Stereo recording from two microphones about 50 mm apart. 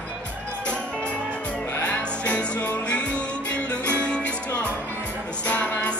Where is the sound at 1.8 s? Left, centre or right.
Left.